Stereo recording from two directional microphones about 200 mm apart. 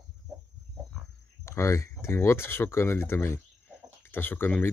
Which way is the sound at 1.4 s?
15° left (ahead or behind).